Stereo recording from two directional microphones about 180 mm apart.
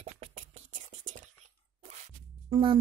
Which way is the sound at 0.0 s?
35° right (ahead or behind).